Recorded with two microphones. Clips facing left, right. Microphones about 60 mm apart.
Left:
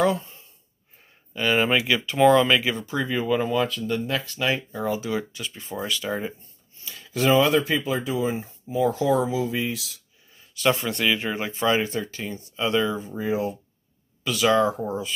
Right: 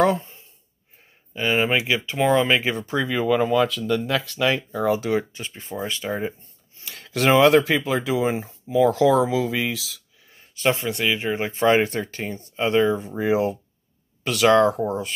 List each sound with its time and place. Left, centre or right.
0.0 s a sound: right
1.3 s speech: centre
2.5 s speech: right
3.1 s speech: right
4.8 s speech: right
5.3 s speech: right
6.8 s speech: right
10.2 s a sound: right
10.5 s a sound: right
10.8 s speech: centre
11.5 s speech: right
13.2 s speech: right
14.2 s speech: right